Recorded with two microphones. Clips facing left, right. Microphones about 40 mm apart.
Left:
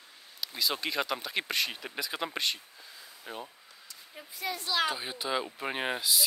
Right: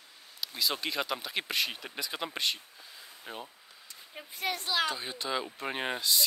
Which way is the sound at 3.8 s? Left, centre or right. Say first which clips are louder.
Right 2 dB; right.